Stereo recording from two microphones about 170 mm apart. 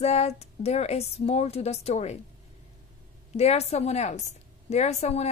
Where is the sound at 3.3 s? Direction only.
40° left (ahead or behind).